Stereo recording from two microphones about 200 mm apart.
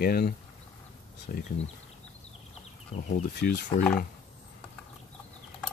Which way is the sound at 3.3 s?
55° left (ahead or behind).